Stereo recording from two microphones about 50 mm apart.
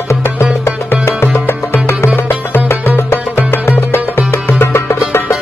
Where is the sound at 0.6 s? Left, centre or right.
Left.